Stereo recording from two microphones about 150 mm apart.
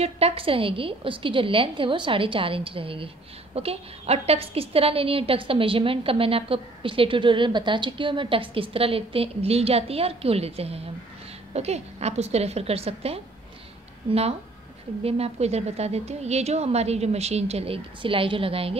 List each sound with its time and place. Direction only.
0.0 s a woman's voice: 40° right (ahead or behind)